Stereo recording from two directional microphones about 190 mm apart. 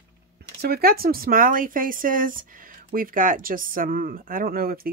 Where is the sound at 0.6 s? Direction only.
55° right (ahead or behind).